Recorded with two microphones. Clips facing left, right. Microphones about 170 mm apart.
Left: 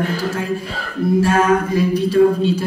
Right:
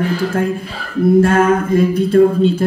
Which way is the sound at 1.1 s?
55° right (ahead or behind).